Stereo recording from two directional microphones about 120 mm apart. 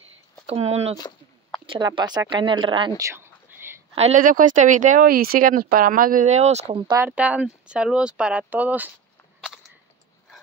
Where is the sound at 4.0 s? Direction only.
75° right (ahead or behind).